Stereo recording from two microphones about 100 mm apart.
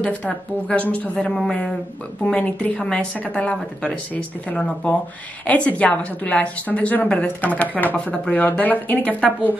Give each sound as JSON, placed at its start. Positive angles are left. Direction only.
{"t": 0.0, "sound": "a woman's voice", "side_deg": 10}